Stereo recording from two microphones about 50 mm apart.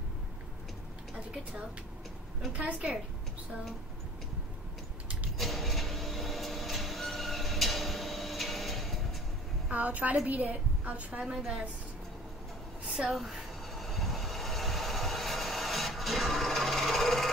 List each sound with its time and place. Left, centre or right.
2.5 s a woman's voice: right
5.4 s a sound: centre
9.7 s a woman's voice: right
12.9 s train: centre